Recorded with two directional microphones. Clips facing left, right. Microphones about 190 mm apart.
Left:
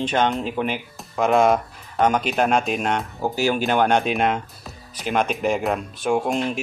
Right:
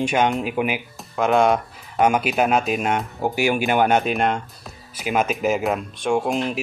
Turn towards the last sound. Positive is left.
turn(degrees=0)  # may be behind; listen again after turning